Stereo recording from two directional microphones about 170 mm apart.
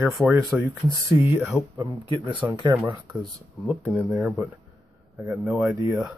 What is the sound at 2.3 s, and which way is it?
Speech, 25° right (ahead or behind).